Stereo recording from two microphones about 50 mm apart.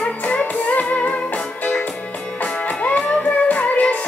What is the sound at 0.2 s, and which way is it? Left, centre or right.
Music, left.